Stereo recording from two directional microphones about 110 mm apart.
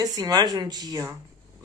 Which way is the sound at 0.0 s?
35° right (ahead or behind).